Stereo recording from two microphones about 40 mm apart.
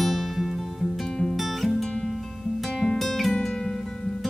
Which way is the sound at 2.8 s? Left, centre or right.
Centre.